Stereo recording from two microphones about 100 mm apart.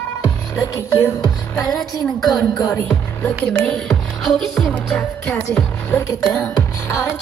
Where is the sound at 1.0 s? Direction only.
30° left (ahead or behind).